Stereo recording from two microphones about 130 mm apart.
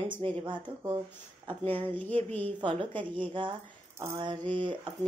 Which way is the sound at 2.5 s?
40° right (ahead or behind).